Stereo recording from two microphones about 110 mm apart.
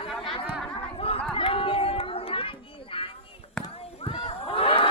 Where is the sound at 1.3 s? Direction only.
55° left (ahead or behind).